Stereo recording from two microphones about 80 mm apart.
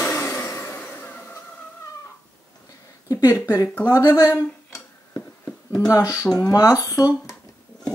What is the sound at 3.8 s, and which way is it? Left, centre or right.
Speech, left.